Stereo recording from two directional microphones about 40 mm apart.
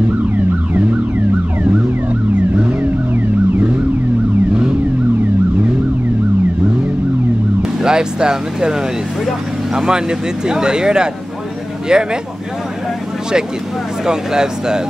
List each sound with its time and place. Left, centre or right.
2.5 s vehicle: right
7.8 s speech: centre
9.8 s speech: centre
14.0 s speech: centre